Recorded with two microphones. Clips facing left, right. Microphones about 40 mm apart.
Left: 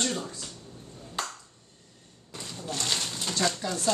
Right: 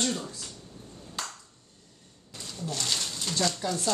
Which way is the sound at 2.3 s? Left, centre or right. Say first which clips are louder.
Even; centre.